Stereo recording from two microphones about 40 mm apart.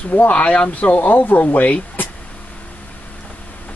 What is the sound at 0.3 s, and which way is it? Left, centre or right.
Speech, left.